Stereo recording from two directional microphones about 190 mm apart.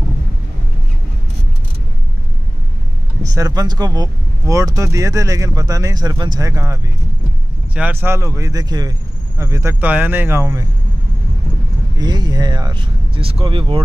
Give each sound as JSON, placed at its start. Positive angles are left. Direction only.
{"t": 3.3, "sound": "speech", "side_deg": -20}
{"t": 12.0, "sound": "speech", "side_deg": -20}